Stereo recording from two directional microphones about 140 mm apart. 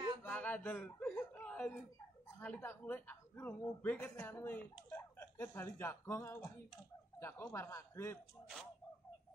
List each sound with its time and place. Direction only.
0.2 s chuckle: 10° left (ahead or behind)
2.3 s a man's voice: 10° left (ahead or behind)